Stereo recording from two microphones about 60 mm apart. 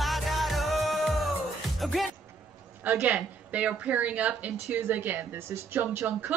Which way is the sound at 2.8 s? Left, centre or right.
Right.